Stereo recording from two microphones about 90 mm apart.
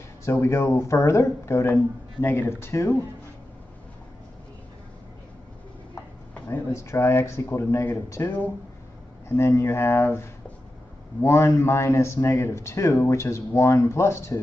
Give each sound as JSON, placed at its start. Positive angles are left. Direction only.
{"t": 0.2, "sound": "a man's voice", "side_deg": 30}
{"t": 6.4, "sound": "speech", "side_deg": 30}
{"t": 11.2, "sound": "a man's voice", "side_deg": 30}